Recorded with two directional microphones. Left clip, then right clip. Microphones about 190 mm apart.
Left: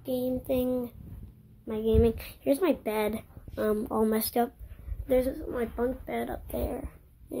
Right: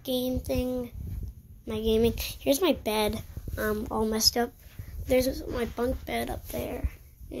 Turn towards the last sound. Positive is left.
turn(degrees=10)  # may be behind; listen again after turning